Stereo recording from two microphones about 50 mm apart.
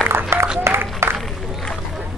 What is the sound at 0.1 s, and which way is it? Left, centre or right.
Applause, right.